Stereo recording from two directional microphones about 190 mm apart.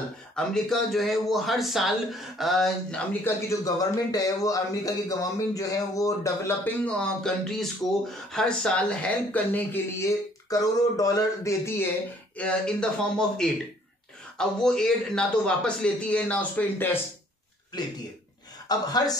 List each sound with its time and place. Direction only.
0.4 s a man's voice: centre (ahead or behind)
18.7 s a woman's voice: 20° left (ahead or behind)